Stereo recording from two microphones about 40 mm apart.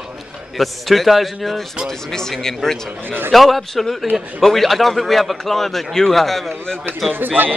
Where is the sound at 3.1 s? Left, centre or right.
Right.